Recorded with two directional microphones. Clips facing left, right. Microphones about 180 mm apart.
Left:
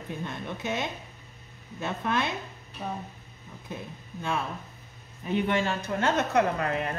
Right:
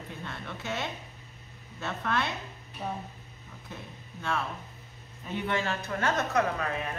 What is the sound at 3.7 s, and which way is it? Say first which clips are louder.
A man's voice: left 6 dB; 15° left (ahead or behind).